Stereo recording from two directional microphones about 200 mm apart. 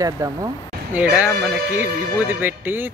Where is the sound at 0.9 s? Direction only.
5° right (ahead or behind).